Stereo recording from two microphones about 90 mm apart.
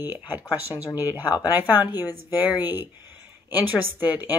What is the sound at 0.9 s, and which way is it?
Speech, 20° right (ahead or behind).